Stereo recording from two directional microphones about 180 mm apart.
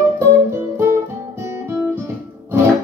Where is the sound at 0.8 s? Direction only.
15° right (ahead or behind).